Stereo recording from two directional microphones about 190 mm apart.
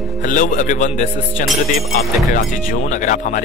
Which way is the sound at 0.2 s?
45° left (ahead or behind).